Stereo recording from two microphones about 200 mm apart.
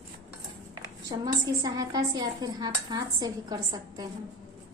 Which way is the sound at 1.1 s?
20° right (ahead or behind).